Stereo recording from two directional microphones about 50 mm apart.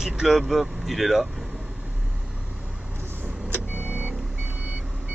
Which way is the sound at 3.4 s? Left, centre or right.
Right.